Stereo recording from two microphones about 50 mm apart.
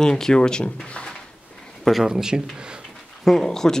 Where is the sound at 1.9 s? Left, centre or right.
Centre.